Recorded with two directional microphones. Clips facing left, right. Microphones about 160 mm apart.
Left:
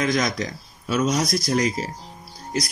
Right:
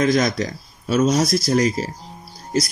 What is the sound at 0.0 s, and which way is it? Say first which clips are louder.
Speech: right 5 dB; 35° right (ahead or behind).